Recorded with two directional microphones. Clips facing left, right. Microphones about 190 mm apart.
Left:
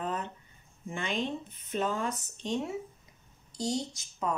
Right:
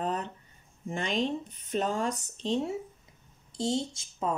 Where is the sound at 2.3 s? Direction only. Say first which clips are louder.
Right 3 dB; 30° right (ahead or behind).